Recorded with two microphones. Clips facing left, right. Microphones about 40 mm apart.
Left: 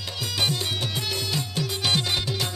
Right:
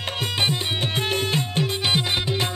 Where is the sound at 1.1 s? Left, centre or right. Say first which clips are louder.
Right 5 dB; right.